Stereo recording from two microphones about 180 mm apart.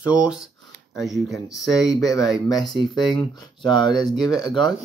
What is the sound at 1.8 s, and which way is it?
Speech, 20° left (ahead or behind).